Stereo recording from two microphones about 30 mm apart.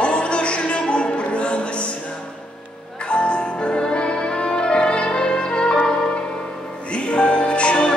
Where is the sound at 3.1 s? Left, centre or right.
Left.